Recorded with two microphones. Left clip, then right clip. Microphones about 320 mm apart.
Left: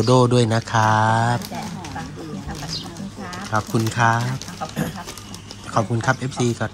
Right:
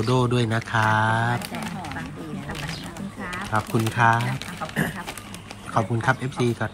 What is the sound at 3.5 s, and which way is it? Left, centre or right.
Speech, centre.